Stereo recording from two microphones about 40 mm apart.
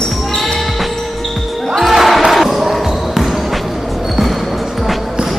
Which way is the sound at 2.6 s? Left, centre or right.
Centre.